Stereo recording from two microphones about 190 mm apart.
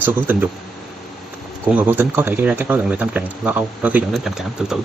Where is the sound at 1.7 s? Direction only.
10° right (ahead or behind).